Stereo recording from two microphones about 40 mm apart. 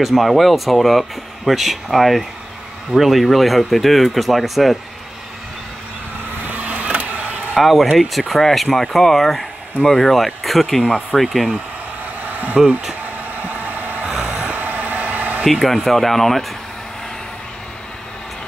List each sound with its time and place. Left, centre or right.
0.0 s speech: centre
6.5 s vehicle: right
7.6 s speech: centre
12.2 s a sound: right
13.4 s vehicle: right
15.4 s speech: centre